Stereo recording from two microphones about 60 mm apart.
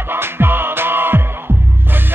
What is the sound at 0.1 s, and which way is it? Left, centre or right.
Music, right.